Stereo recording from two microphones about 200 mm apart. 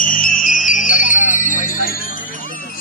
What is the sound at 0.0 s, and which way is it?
Music, 40° left (ahead or behind).